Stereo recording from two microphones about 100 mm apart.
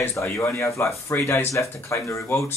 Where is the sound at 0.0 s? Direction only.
30° left (ahead or behind).